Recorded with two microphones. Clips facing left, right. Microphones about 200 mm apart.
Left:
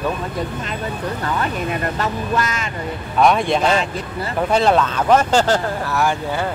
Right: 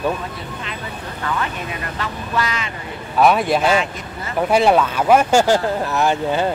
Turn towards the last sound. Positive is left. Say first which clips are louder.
# right 2 dB
turn(degrees=-20)  # may be behind; listen again after turning